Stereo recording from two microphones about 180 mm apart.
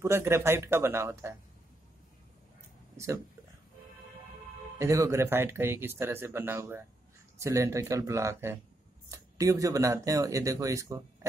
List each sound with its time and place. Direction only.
0.0 s speech: 15° right (ahead or behind)
4.7 s speech: 15° right (ahead or behind)